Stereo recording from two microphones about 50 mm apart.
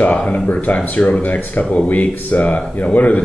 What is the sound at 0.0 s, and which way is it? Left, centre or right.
Speech, left.